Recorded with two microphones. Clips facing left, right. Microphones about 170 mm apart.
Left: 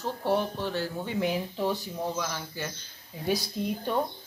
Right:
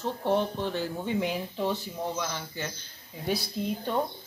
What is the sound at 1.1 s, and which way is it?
Speech, 5° left (ahead or behind).